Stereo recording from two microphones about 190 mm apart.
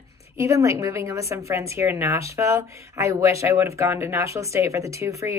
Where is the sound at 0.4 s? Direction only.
15° right (ahead or behind).